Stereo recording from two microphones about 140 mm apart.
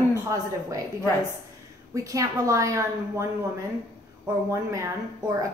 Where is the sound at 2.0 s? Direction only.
25° right (ahead or behind).